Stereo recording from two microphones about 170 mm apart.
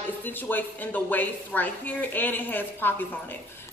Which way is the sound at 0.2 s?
10° left (ahead or behind).